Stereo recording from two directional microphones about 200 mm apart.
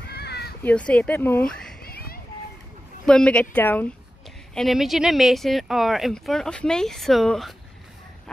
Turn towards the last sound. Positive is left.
turn(degrees=0)  # may be behind; listen again after turning